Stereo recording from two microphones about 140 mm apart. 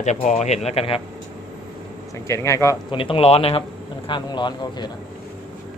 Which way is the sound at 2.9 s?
40° left (ahead or behind).